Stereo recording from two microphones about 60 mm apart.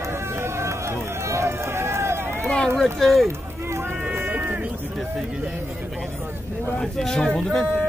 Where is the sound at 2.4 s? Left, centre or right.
Centre.